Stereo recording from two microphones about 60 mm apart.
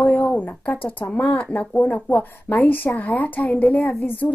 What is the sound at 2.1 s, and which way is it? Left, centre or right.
A woman's voice, left.